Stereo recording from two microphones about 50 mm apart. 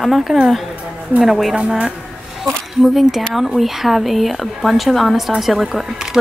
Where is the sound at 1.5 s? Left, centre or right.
Centre.